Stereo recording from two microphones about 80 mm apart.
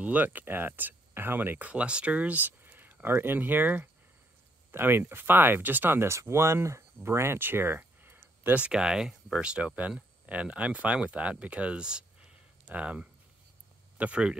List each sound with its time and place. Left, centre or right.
0.0 s speech: right
8.5 s speech: centre